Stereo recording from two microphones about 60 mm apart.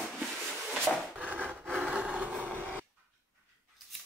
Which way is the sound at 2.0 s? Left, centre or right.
Right.